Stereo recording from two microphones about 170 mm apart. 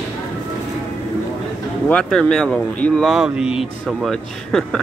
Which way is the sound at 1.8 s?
5° left (ahead or behind).